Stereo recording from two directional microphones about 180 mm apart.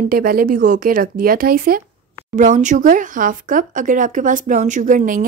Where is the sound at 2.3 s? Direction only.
45° right (ahead or behind).